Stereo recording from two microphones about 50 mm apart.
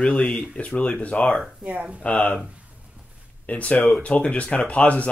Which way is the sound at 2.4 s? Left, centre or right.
Right.